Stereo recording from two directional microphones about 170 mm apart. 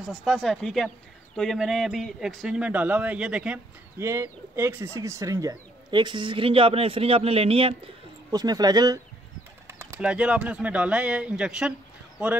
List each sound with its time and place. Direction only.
0.0 s speech: centre (ahead or behind); by 7.7 s 35° right (ahead or behind)
8.3 s speech: 20° right (ahead or behind); by 11.7 s 5° right (ahead or behind)